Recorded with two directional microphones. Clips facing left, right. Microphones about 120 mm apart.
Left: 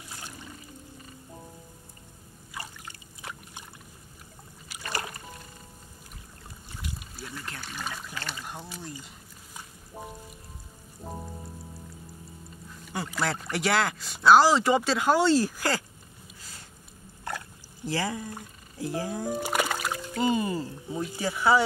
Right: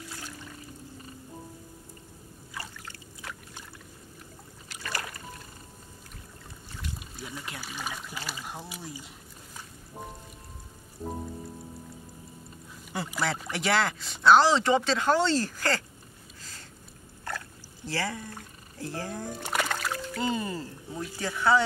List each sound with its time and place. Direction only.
2.5 s trickle: 15° left (ahead or behind)
4.8 s music: 25° left (ahead or behind)
7.0 s speech: centre (ahead or behind)
12.9 s speech: centre (ahead or behind)
17.8 s a sound: 15° left (ahead or behind)
21.2 s speech: 10° left (ahead or behind)